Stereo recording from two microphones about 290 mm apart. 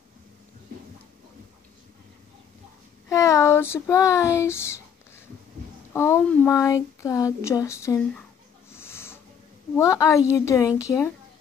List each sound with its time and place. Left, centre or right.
3.1 s child singing: centre
5.9 s speech: centre
8.7 s a sound: centre
9.8 s speech: centre